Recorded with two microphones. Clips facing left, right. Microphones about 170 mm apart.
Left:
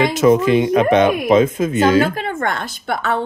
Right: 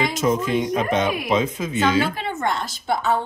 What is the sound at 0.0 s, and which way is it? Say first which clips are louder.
Speech: left 8 dB; 65° left (ahead or behind).